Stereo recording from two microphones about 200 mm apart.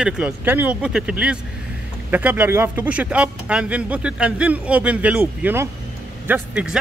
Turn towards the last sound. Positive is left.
turn(degrees=-5)  # may be behind; listen again after turning